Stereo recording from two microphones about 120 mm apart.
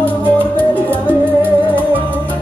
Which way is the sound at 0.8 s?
15° right (ahead or behind).